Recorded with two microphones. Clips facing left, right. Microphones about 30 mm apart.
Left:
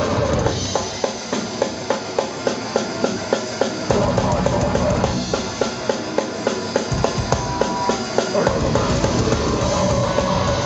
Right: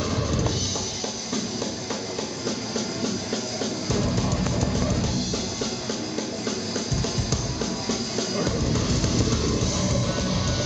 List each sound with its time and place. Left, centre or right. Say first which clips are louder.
0.0 s music: left 7 dB; left
5.3 s music: left 7 dB; left
7.0 s music: left 7 dB; left
7.8 s train: left 8 dB; left
9.2 s train: left 5 dB; left
9.6 s music: left 7 dB; left